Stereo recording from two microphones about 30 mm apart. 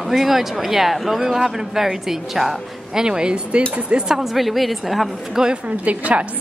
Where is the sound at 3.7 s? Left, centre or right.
Right.